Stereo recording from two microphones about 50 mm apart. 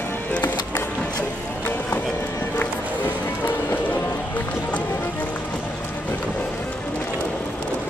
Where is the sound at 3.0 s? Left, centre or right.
Left.